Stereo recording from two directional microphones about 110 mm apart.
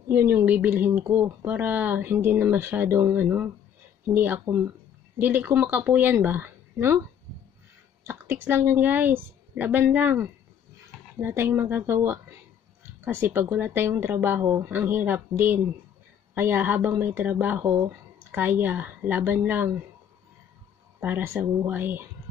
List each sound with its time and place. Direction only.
0.1 s speech: 20° right (ahead or behind)
8.1 s speech: 20° right (ahead or behind)
21.0 s speech: 20° right (ahead or behind)